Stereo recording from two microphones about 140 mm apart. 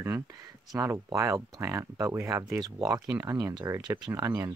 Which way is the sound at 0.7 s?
20° right (ahead or behind).